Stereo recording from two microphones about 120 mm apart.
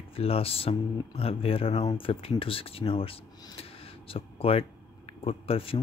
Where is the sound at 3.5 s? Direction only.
50° left (ahead or behind).